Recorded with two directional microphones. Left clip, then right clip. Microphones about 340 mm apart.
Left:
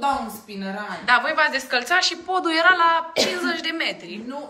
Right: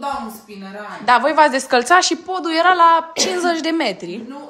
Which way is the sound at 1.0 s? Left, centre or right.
Centre.